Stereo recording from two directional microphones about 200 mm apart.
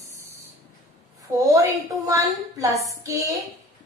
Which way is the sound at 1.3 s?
15° right (ahead or behind).